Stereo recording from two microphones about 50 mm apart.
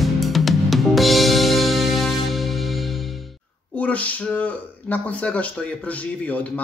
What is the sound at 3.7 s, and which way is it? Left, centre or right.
Speech, left.